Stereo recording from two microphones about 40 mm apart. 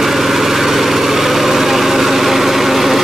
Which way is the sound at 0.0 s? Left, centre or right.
Centre.